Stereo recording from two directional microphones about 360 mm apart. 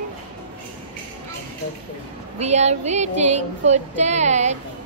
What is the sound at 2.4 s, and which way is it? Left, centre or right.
Speech, centre.